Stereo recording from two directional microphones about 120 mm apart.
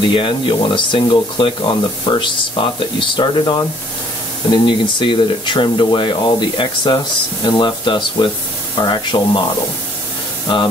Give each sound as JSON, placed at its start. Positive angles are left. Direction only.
{"t": 0.1, "sound": "speech", "side_deg": 45}